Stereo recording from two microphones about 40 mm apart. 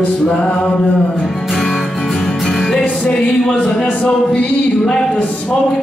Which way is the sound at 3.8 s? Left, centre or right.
Left.